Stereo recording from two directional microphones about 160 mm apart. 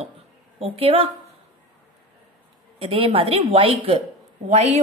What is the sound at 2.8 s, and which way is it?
A woman's voice, 35° right (ahead or behind).